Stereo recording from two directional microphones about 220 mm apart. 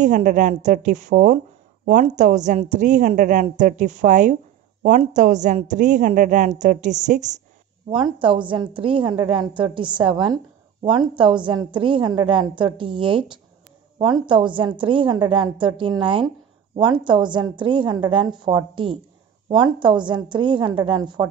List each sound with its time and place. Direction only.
0.0 s a woman's voice: 35° right (ahead or behind)
7.9 s a woman's voice: 25° right (ahead or behind)